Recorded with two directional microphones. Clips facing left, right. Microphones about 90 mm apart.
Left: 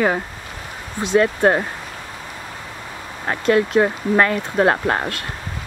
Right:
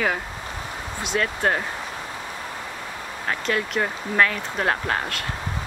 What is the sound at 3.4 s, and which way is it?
Speech, 45° left (ahead or behind).